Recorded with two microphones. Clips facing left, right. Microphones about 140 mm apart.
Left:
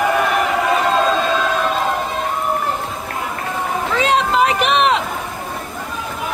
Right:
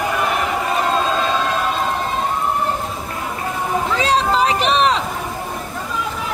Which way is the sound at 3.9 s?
35° right (ahead or behind).